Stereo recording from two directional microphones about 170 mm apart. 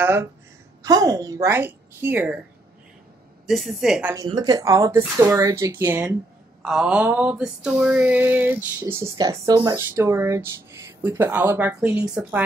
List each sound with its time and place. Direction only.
0.0 s speech: 15° right (ahead or behind)
3.4 s mantra: centre (ahead or behind)
4.3 s speech: 25° right (ahead or behind)
6.6 s mantra: 5° right (ahead or behind)
7.8 s speech: 10° right (ahead or behind)